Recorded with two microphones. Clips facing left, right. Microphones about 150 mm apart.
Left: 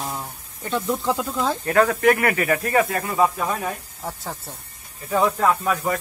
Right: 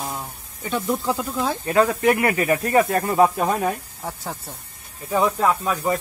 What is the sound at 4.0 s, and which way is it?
Speech, 5° right (ahead or behind).